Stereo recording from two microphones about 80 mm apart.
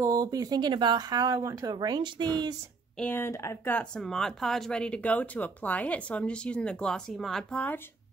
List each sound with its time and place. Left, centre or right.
0.0 s speech: right
3.2 s speech: left
3.9 s speech: centre
7.5 s speech: left